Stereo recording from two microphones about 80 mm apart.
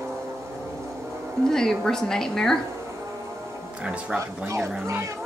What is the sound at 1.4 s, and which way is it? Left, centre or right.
A woman's voice, centre.